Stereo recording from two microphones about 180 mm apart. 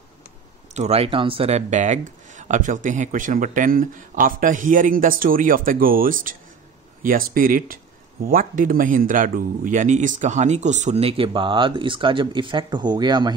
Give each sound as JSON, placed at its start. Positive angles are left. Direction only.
{"t": 0.7, "sound": "speech", "side_deg": -35}